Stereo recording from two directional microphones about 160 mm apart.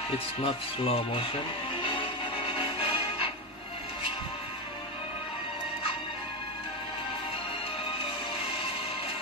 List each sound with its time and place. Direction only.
0.4 s speech: 35° left (ahead or behind)
1.8 s music: 30° left (ahead or behind)